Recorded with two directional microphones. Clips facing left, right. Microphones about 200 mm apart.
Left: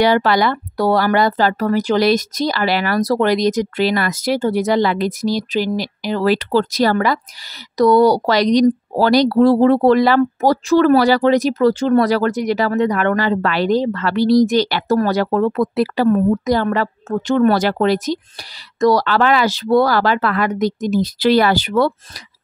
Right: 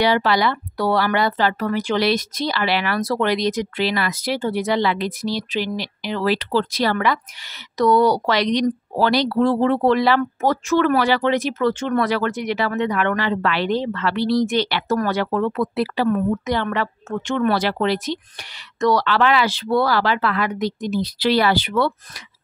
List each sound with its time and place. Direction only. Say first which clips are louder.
0.0 s speech: left 4 dB; 45° left (ahead or behind)